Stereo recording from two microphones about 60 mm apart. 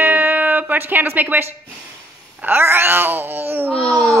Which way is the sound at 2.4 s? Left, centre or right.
Right.